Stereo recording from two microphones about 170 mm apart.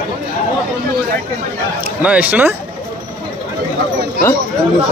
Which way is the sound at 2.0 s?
10° right (ahead or behind).